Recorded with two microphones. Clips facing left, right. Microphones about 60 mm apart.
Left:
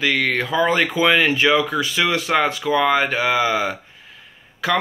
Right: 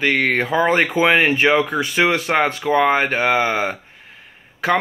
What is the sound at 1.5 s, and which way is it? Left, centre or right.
Speech, right.